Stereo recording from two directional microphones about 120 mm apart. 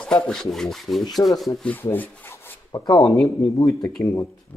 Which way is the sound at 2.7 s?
30° left (ahead or behind).